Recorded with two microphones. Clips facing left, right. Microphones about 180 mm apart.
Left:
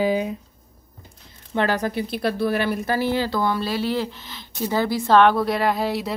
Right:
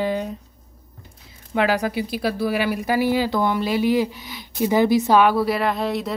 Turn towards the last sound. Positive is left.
turn(degrees=0)  # may be behind; listen again after turning